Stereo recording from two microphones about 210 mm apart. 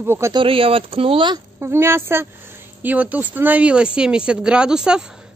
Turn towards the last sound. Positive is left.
turn(degrees=-5)  # may be behind; listen again after turning